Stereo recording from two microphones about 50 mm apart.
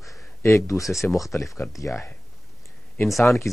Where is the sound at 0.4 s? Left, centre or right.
Left.